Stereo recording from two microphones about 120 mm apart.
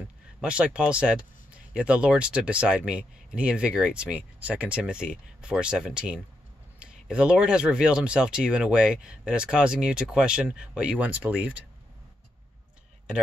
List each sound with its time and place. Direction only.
0.4 s speech: 10° right (ahead or behind)